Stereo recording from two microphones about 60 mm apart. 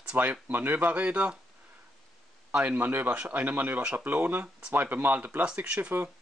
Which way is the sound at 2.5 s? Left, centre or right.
Right.